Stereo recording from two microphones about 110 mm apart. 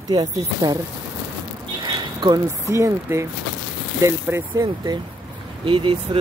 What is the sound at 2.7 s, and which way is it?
Speech, 25° right (ahead or behind).